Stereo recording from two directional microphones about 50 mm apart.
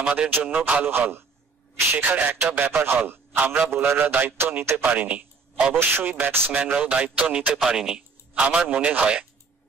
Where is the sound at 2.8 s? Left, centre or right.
Right.